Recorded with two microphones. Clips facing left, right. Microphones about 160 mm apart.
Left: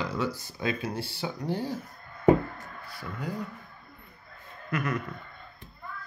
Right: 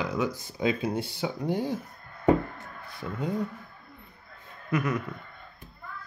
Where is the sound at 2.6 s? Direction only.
25° right (ahead or behind).